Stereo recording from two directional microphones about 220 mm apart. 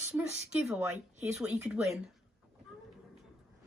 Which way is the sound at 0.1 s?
5° right (ahead or behind).